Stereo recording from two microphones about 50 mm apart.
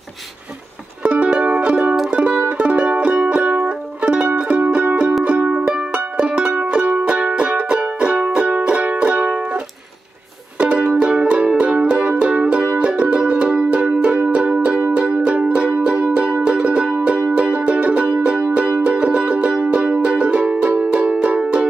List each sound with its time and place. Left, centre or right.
1.0 s music: right
10.6 s music: right